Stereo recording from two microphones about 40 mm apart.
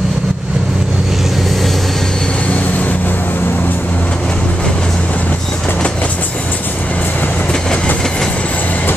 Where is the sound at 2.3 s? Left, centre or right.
Left.